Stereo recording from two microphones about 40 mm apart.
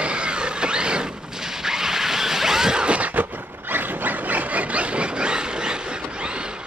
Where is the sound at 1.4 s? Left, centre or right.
Centre.